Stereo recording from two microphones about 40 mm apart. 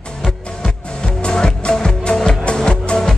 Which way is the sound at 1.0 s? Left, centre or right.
Left.